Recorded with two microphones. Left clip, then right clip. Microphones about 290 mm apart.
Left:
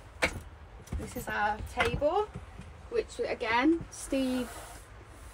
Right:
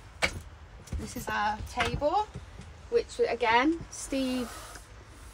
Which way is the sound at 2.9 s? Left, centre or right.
Centre.